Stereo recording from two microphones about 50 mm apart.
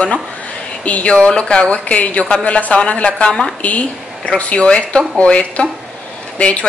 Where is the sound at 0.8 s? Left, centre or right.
Left.